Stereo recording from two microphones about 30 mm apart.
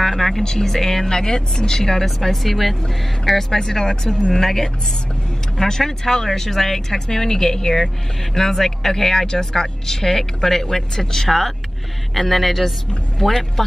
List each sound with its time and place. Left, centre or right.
0.0 s speech: centre
2.0 s speech: centre